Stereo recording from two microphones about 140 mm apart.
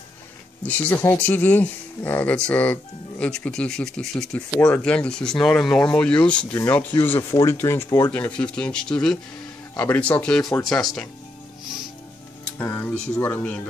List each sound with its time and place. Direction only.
0.7 s speech: 10° left (ahead or behind)
12.5 s speech: 10° left (ahead or behind)